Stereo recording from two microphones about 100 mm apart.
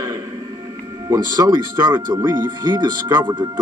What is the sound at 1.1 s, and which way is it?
A man's voice, 40° right (ahead or behind).